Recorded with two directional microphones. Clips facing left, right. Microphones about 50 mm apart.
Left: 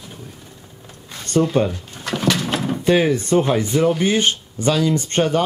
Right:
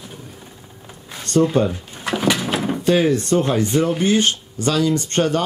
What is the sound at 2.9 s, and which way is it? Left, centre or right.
Speech, centre.